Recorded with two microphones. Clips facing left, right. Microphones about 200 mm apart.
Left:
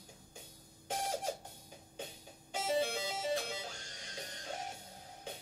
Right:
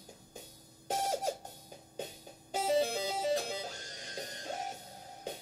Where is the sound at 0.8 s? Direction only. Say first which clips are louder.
Right 4 dB; 40° right (ahead or behind).